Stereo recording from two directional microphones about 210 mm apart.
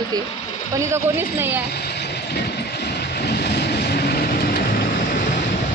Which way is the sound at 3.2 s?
50° left (ahead or behind).